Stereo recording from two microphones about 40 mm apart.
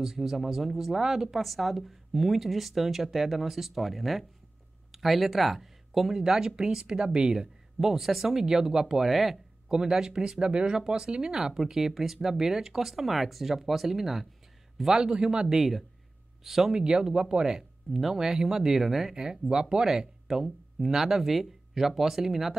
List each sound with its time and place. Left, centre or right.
0.0 s speech: centre
6.2 s speech: centre
9.1 s speech: centre
9.7 s speech: centre
15.0 s speech: centre
15.5 s speech: centre
16.8 s speech: centre
19.1 s speech: centre